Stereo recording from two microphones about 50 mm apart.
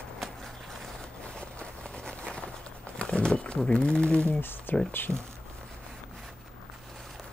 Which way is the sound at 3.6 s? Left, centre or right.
Centre.